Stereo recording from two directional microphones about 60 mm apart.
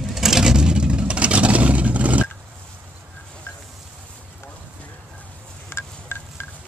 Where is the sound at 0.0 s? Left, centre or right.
Centre; by 2.2 s right.